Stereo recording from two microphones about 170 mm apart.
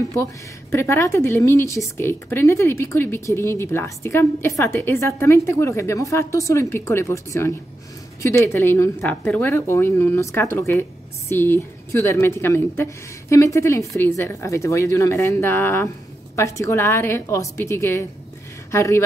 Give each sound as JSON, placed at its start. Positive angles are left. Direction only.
{"t": 0.1, "sound": "speech", "side_deg": 15}